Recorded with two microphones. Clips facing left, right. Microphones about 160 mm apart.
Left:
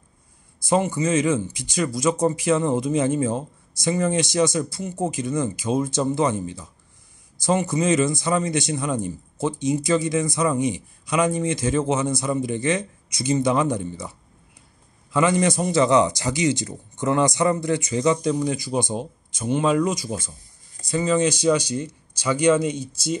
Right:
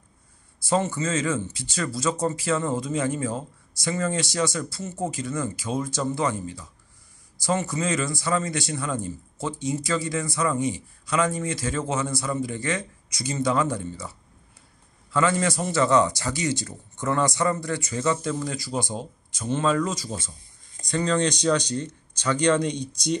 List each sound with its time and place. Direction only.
0.6 s a man's voice: 15° left (ahead or behind)
15.1 s a man's voice: 20° left (ahead or behind)